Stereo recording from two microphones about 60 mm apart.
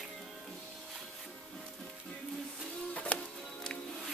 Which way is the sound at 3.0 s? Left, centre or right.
Left.